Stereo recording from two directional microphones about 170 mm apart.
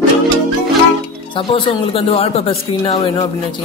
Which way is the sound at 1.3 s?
30° left (ahead or behind).